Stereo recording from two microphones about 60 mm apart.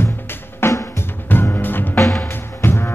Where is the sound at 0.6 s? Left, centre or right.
Left.